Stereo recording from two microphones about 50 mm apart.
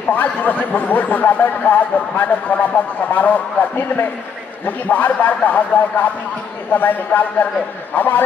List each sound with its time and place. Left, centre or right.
0.1 s a man's voice: left